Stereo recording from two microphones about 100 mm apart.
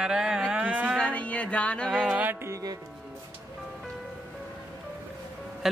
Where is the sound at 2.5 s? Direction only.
35° right (ahead or behind).